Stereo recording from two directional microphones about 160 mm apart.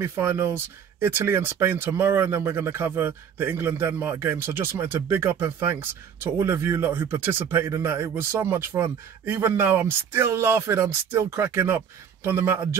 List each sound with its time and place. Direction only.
0.0 s speech: 15° right (ahead or behind)